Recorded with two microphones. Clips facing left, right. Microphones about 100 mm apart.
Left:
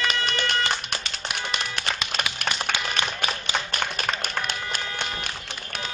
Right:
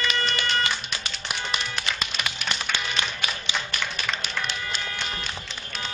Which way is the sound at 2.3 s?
45° left (ahead or behind).